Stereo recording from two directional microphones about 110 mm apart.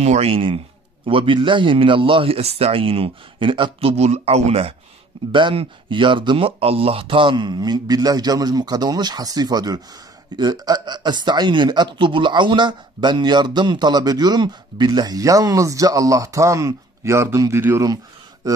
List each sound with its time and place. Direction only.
0.0 s a man's voice: 80° right; by 3.9 s 50° right (ahead or behind)
3.9 s speech: 75° right (ahead or behind)
5.3 s speech: 50° right (ahead or behind); by 17.8 s 25° right (ahead or behind)